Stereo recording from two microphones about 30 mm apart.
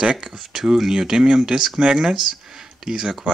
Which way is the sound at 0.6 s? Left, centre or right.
Centre.